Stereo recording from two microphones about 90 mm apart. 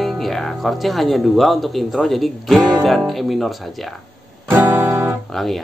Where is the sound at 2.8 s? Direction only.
Centre (ahead or behind).